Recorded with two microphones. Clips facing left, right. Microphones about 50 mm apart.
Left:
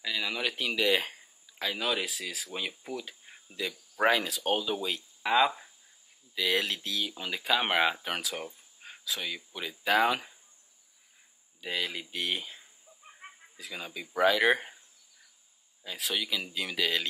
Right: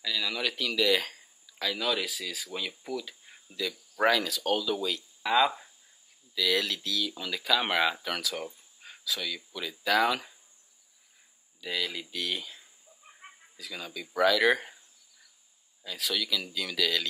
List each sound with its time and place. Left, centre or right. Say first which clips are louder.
0.0 s speech: right 1 dB; centre
11.6 s speech: even; left
15.8 s speech: right 1 dB; left